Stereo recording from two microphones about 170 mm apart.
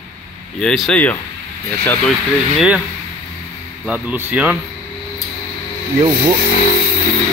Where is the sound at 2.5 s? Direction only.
5° right (ahead or behind).